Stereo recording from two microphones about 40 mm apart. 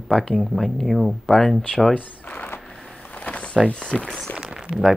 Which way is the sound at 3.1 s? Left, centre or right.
Left.